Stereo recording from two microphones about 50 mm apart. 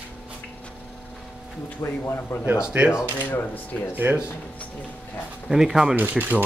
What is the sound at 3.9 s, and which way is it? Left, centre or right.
Speech, right.